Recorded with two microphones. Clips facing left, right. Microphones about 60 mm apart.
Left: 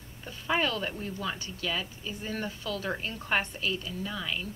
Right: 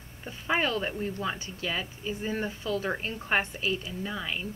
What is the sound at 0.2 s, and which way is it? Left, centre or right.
Speech, right.